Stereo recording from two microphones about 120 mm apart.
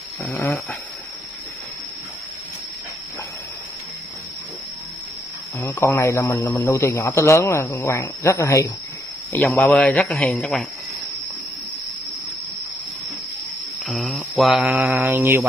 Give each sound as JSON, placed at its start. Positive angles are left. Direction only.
{"t": 0.2, "sound": "a man's voice", "side_deg": 15}
{"t": 5.6, "sound": "a man's voice", "side_deg": 25}
{"t": 9.3, "sound": "a man's voice", "side_deg": 15}
{"t": 13.8, "sound": "speech", "side_deg": 0}
{"t": 14.4, "sound": "mantra", "side_deg": -10}